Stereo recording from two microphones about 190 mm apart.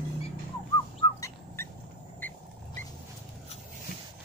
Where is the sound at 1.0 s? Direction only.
15° left (ahead or behind).